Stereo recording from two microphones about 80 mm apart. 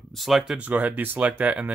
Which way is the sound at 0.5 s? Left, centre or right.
Centre.